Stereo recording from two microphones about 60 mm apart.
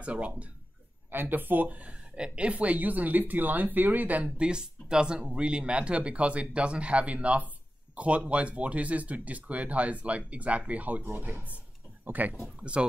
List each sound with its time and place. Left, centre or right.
0.0 s speech: right
1.1 s speech: right
12.8 s speech: centre